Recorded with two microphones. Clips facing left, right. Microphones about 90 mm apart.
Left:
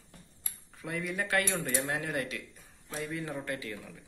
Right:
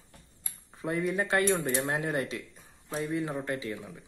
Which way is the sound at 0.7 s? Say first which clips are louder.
Right 6 dB; 30° right (ahead or behind).